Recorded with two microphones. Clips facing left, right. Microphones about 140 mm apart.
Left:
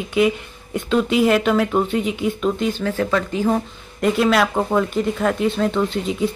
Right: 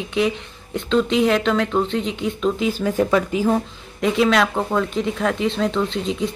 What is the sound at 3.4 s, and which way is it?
Speech, centre (ahead or behind).